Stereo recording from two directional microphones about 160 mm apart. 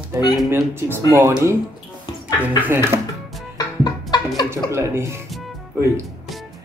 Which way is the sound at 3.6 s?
25° left (ahead or behind).